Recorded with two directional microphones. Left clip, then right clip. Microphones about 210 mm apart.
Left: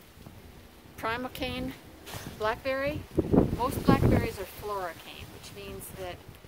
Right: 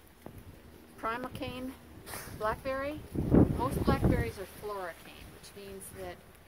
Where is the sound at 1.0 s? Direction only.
35° left (ahead or behind).